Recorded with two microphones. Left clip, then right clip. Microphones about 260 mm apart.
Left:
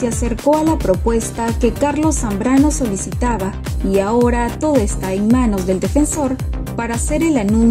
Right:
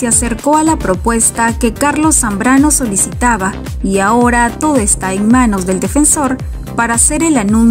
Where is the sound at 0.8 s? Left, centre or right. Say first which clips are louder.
Right 3 dB; right.